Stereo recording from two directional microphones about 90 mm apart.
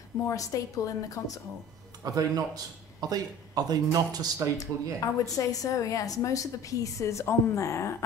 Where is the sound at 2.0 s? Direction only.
45° right (ahead or behind).